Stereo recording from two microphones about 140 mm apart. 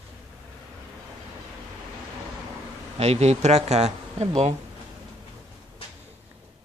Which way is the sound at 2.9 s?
50° right (ahead or behind).